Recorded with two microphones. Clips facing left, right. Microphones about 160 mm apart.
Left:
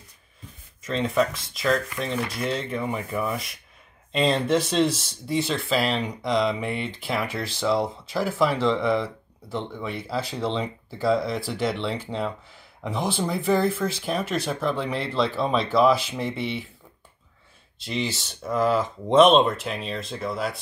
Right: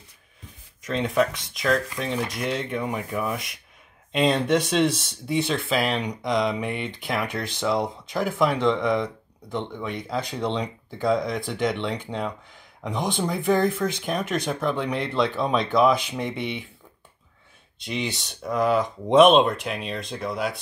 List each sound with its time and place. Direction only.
0.8 s speech: centre (ahead or behind)
17.7 s speech: centre (ahead or behind)